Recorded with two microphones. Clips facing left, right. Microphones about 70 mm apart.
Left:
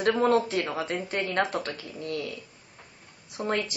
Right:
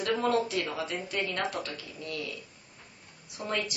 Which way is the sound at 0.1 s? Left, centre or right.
Left.